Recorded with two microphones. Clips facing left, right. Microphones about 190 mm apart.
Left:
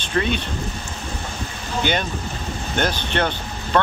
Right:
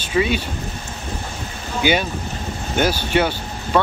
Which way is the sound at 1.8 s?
10° right (ahead or behind).